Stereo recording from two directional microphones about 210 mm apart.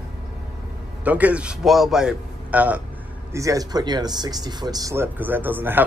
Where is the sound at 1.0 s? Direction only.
5° right (ahead or behind).